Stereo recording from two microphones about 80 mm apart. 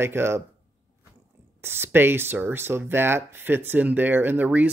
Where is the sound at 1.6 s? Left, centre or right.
Right.